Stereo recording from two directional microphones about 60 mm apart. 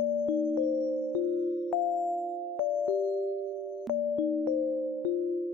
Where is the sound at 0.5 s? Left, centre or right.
Left.